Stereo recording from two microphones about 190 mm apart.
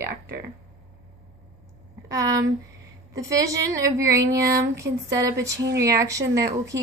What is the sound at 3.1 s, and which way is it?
Speech, 15° right (ahead or behind).